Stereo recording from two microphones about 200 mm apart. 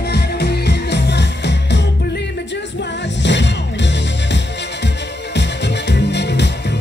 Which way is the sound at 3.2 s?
60° left (ahead or behind).